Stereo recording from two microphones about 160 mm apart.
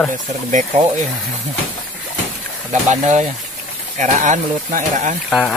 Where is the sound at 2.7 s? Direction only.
50° right (ahead or behind).